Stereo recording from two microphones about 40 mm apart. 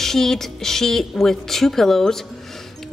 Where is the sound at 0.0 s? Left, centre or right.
Centre.